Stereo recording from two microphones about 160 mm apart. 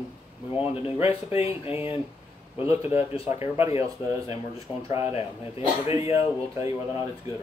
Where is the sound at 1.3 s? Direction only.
40° left (ahead or behind).